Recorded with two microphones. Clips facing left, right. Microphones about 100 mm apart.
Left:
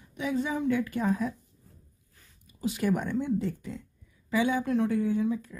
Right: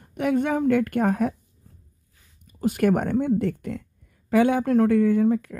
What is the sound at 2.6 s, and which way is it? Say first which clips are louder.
Speech: right 7 dB; 50° right (ahead or behind).